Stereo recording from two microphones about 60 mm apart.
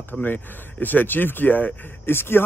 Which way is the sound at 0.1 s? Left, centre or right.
Left.